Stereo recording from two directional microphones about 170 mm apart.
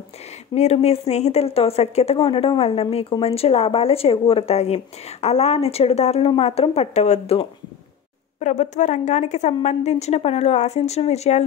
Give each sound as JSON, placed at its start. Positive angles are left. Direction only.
{"t": 0.6, "sound": "speech", "side_deg": 40}